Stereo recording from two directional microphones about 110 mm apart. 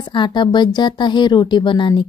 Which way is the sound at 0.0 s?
45° left (ahead or behind).